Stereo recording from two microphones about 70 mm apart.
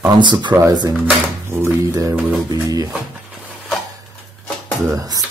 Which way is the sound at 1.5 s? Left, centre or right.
Right.